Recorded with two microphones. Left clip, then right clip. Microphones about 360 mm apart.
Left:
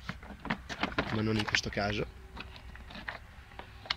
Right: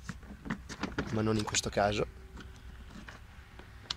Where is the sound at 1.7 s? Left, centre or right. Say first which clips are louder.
Right 4 dB; centre.